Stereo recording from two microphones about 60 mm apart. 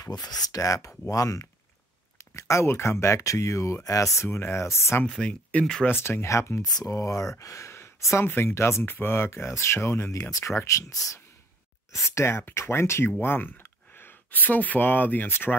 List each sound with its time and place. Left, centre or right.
0.0 s speech: left
2.1 s speech: left
5.2 s speech: centre
5.9 s speech: left
6.2 s speech: left
6.6 s speech: left
8.3 s speech: left
8.8 s speech: left
12.1 s speech: left